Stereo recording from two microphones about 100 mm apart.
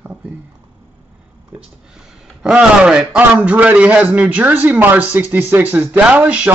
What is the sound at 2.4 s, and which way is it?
A man's voice, 10° right (ahead or behind).